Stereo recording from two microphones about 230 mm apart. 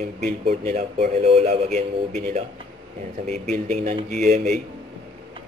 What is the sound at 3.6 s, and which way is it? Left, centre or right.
Speech, right.